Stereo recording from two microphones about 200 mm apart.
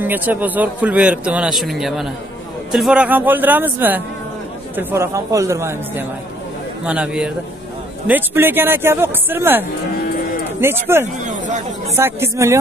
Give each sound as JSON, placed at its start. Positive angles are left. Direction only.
{"t": 0.0, "sound": "a man's voice", "side_deg": -10}
{"t": 11.2, "sound": "speech", "side_deg": -40}
{"t": 12.0, "sound": "a man's voice", "side_deg": -15}